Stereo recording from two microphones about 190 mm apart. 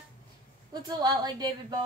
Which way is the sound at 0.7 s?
20° right (ahead or behind).